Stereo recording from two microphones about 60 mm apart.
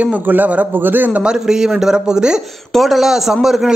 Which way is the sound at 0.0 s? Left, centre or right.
Right.